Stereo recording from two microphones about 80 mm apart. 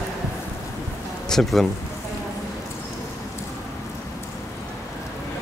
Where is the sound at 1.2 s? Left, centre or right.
Centre.